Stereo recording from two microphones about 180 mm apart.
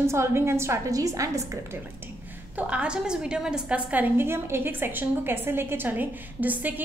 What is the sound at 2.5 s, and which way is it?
A woman's voice, 5° right (ahead or behind).